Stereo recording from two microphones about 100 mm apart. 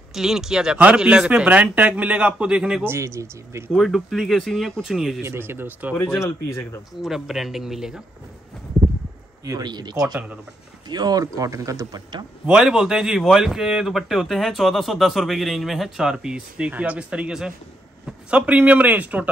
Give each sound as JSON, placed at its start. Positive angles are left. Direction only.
{"t": 0.1, "sound": "speech", "side_deg": -5}
{"t": 2.8, "sound": "speech", "side_deg": -25}
{"t": 3.7, "sound": "speech", "side_deg": 0}
{"t": 5.2, "sound": "speech", "side_deg": -25}
{"t": 6.2, "sound": "speech", "side_deg": 30}
{"t": 7.0, "sound": "speech", "side_deg": 0}
{"t": 9.4, "sound": "speech", "side_deg": -40}
{"t": 12.4, "sound": "speech", "side_deg": -5}